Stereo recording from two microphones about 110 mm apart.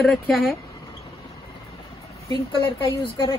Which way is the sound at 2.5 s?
45° left (ahead or behind).